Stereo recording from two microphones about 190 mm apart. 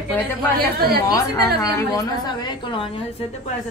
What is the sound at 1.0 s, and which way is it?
A woman's voice, 20° left (ahead or behind).